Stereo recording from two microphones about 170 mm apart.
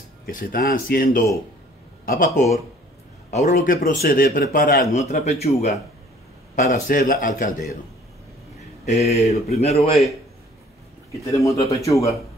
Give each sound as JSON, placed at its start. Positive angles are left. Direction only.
{"t": 0.3, "sound": "a man's voice", "side_deg": 55}
{"t": 3.5, "sound": "speech", "side_deg": 55}
{"t": 4.9, "sound": "speech", "side_deg": 40}
{"t": 6.7, "sound": "a man's voice", "side_deg": 55}
{"t": 8.8, "sound": "speech", "side_deg": 40}
{"t": 11.3, "sound": "speech", "side_deg": 20}